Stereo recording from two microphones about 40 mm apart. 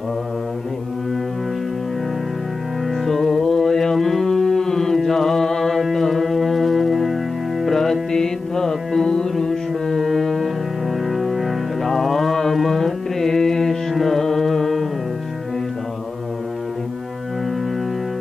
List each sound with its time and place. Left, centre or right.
2.9 s music: centre
13.9 s carnatic music: centre